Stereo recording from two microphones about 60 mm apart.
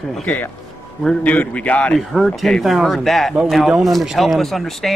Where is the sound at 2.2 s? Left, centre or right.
Centre.